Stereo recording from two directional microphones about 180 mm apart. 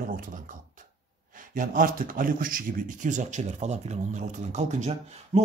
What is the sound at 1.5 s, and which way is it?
Speech, 50° right (ahead or behind).